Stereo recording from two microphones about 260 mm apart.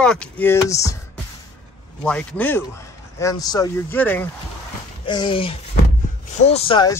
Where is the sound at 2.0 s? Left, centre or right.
Centre.